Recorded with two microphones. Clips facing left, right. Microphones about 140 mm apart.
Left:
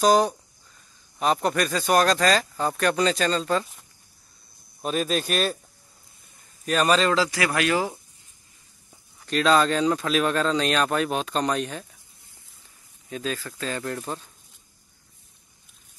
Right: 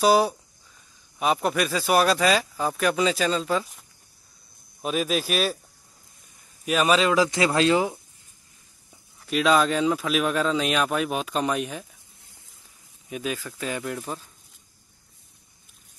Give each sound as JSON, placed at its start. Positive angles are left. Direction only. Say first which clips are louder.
{"t": 0.0, "sound": "speech", "louder": "even", "side_deg": -5}
{"t": 4.8, "sound": "speech", "louder": "even", "side_deg": -5}
{"t": 6.6, "sound": "speech", "louder": "even", "side_deg": -5}
{"t": 7.2, "sound": "speech", "louder": "right 3 dB", "side_deg": -20}
{"t": 9.2, "sound": "speech", "louder": "even", "side_deg": -5}
{"t": 13.1, "sound": "speech", "louder": "even", "side_deg": -15}